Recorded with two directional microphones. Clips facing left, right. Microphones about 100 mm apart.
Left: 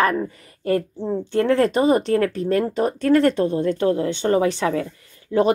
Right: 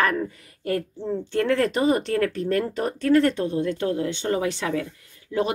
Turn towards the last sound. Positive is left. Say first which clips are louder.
# left 6 dB
turn(degrees=35)  # may be behind; listen again after turning